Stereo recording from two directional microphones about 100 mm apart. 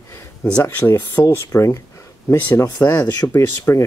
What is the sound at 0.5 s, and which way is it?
Speech, 20° left (ahead or behind).